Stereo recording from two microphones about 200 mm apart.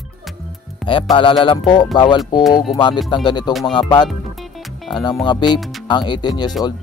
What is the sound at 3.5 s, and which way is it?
Speech, centre (ahead or behind).